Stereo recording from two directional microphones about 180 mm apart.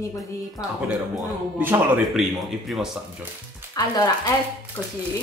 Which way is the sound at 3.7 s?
20° left (ahead or behind).